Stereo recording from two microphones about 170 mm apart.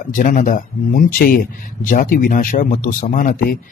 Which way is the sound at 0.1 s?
50° left (ahead or behind).